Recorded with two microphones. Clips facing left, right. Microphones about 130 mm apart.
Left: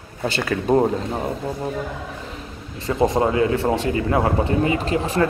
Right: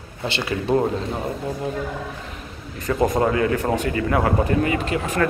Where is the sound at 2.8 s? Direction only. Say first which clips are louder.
Left 1 dB; 25° left (ahead or behind).